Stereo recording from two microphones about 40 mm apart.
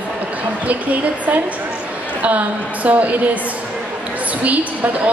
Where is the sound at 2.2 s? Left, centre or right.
Right.